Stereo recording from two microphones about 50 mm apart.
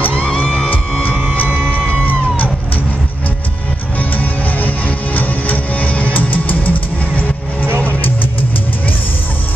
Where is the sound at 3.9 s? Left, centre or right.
Left.